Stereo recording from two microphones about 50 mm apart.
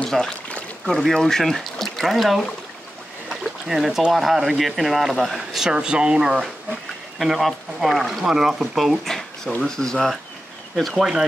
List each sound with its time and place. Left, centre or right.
0.1 s speech: centre
5.7 s speech: centre
7.2 s speech: centre
8.3 s speech: centre
9.0 s a sound: centre
9.6 s speech: centre